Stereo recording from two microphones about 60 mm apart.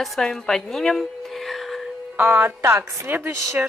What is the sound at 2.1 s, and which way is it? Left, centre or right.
Speech, right.